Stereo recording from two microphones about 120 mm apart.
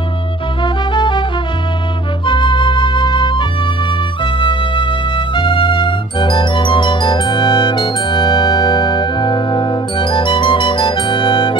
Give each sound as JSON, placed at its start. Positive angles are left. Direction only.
{"t": 0.9, "sound": "music", "side_deg": 40}
{"t": 2.2, "sound": "flute", "side_deg": 45}
{"t": 4.2, "sound": "music", "side_deg": 45}